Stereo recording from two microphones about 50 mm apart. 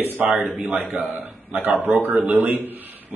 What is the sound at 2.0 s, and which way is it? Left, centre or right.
Speech, right.